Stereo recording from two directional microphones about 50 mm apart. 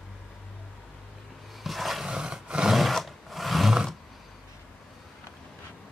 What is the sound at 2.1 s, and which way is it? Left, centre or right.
Roar, centre.